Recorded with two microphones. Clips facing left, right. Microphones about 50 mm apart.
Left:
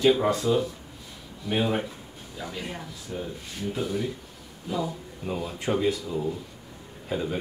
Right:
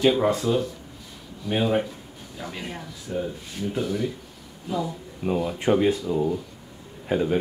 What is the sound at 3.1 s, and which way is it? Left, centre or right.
Speech, centre.